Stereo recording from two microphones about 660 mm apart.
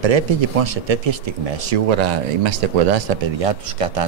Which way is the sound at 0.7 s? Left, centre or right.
Right.